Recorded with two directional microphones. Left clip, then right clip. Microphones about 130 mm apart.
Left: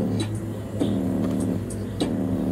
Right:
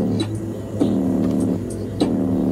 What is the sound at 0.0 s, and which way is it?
Music, 25° right (ahead or behind).